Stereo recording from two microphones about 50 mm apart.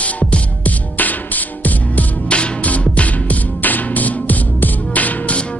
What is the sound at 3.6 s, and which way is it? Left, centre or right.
Music, left.